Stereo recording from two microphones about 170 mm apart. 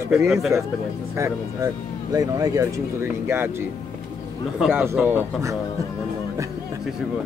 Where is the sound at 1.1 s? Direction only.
15° right (ahead or behind).